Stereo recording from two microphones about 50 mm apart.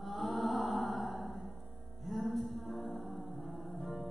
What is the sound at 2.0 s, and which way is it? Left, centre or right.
Music, centre.